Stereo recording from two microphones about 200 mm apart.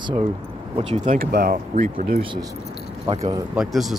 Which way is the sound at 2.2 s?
25° right (ahead or behind).